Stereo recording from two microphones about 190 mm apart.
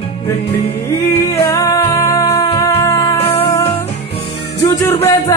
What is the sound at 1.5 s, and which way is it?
Music, 15° left (ahead or behind).